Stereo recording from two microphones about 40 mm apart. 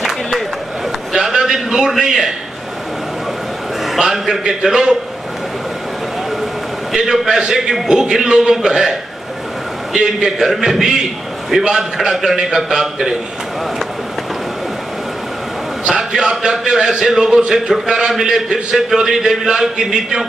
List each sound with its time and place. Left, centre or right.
1.1 s a sound: centre
2.0 s a man's voice: centre
4.1 s a man's voice: centre
7.0 s a man's voice: centre
9.9 s a man's voice: centre
16.0 s a man's voice: centre